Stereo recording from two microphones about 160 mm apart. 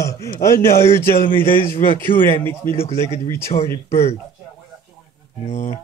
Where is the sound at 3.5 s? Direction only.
40° left (ahead or behind).